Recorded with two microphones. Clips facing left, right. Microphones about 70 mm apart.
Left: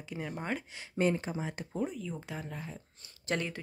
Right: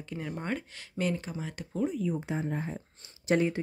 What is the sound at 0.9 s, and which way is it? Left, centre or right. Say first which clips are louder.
Speech: left 2 dB; left.